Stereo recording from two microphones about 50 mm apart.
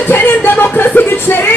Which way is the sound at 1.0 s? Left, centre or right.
Left.